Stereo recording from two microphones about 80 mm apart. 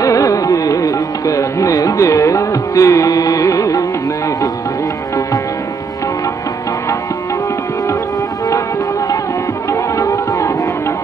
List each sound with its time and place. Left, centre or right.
0.0 s music: left
9.7 s music: left